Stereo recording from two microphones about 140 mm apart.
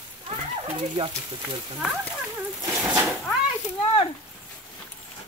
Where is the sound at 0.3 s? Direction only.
40° right (ahead or behind).